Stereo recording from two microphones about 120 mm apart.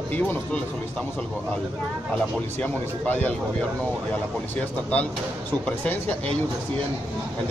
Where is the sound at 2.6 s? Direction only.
10° left (ahead or behind).